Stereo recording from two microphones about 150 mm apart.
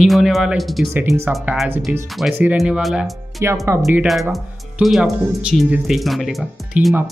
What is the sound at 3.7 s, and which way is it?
Speech, 20° right (ahead or behind).